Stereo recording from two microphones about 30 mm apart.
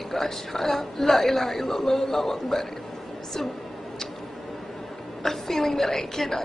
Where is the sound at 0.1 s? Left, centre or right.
Centre.